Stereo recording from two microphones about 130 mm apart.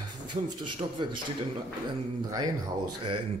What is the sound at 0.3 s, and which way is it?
Speech, 35° right (ahead or behind).